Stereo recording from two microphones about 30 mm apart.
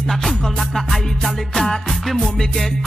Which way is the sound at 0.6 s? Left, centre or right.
Centre.